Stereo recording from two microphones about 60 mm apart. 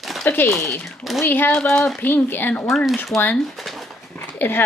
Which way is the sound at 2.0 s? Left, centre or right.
Left.